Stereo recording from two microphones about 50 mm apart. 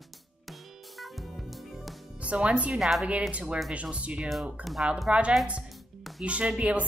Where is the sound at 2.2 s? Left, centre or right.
Right.